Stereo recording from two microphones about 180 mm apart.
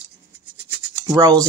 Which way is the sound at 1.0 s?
20° right (ahead or behind).